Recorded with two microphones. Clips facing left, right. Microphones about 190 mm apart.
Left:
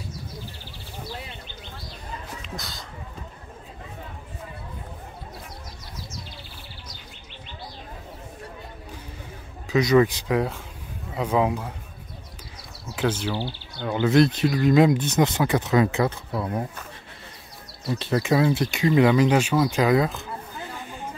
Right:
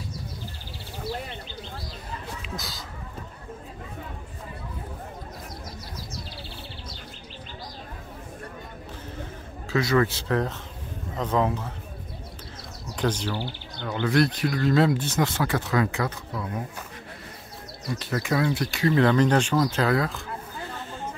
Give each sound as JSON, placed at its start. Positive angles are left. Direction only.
{"t": 2.4, "sound": "a sound", "side_deg": 0}
{"t": 9.7, "sound": "speech", "side_deg": 20}
{"t": 12.9, "sound": "speech", "side_deg": 5}
{"t": 17.8, "sound": "speech", "side_deg": 25}
{"t": 20.7, "sound": "chatter", "side_deg": 15}